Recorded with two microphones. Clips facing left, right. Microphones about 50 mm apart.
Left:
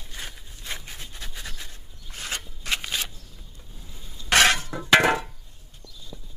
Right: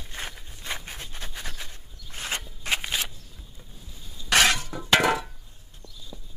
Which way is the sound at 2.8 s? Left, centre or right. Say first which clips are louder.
Right 1 dB; centre.